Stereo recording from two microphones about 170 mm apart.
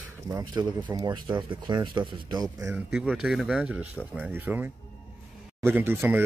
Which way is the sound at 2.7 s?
5° right (ahead or behind).